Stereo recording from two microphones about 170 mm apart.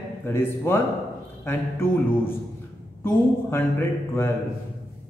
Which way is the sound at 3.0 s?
15° left (ahead or behind).